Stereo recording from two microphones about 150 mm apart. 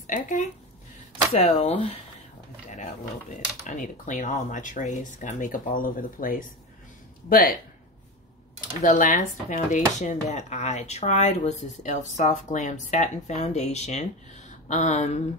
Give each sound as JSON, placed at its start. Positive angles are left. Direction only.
{"t": 0.0, "sound": "speech", "side_deg": 60}
{"t": 1.3, "sound": "speech", "side_deg": 50}
{"t": 3.3, "sound": "speech", "side_deg": 55}
{"t": 8.5, "sound": "speech", "side_deg": 60}